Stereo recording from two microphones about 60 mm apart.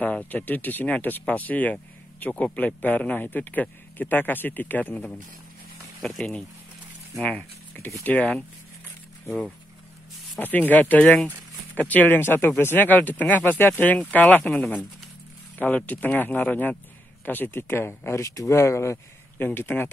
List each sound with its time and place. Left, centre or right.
0.0 s speech: left
4.9 s speech: left
7.2 s speech: left
10.4 s speech: left
12.2 s speech: left
15.5 s speech: left
18.2 s speech: left
19.3 s speech: left